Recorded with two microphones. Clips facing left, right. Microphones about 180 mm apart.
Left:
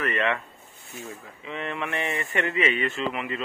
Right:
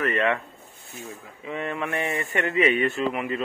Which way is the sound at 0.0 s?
35° right (ahead or behind).